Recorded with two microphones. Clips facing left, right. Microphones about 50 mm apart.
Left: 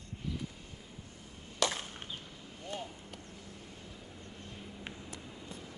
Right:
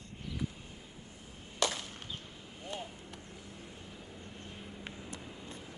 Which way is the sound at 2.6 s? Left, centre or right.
Centre.